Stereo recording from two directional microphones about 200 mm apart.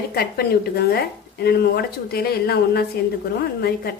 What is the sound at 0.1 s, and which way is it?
A woman's voice, 50° left (ahead or behind).